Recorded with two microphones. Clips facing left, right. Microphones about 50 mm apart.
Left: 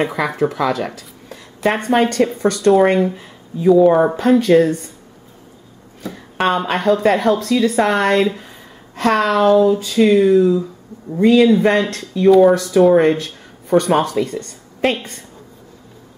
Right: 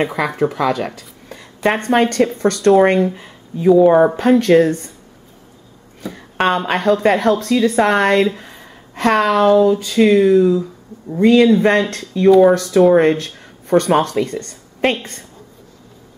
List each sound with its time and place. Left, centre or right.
0.0 s a woman's voice: centre
6.0 s speech: centre